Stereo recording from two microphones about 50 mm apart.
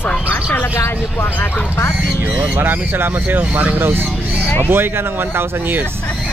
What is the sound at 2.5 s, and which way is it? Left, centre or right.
Speech, right.